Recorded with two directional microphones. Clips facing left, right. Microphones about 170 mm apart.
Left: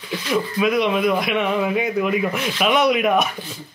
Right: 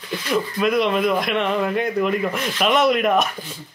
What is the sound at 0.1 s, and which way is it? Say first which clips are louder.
Speech: even; centre (ahead or behind).